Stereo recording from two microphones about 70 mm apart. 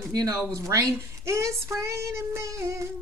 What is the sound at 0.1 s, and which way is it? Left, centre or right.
Speech, right.